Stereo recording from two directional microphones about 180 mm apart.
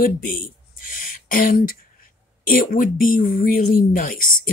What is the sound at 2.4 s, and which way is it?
Speech, 50° left (ahead or behind).